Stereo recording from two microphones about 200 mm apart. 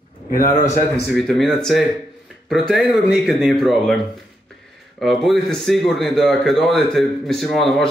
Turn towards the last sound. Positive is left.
turn(degrees=0)  # may be behind; listen again after turning